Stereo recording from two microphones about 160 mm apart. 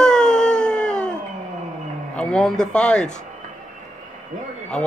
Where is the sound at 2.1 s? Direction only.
5° left (ahead or behind).